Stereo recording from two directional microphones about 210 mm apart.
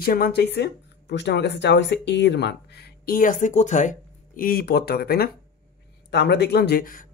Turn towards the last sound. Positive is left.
turn(degrees=40)  # may be behind; listen again after turning